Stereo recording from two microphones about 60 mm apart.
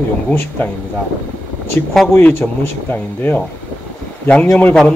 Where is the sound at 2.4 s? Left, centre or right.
Left.